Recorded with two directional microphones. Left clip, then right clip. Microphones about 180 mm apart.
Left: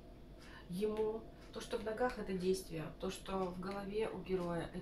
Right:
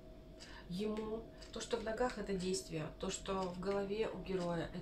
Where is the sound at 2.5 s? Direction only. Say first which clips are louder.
Left 2 dB; 35° right (ahead or behind).